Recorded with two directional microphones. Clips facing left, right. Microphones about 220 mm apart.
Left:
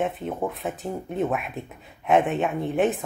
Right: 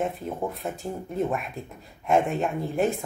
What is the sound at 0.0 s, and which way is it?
Speech, centre (ahead or behind).